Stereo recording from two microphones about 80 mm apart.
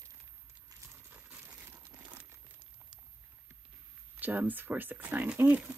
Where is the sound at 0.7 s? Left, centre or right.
Right.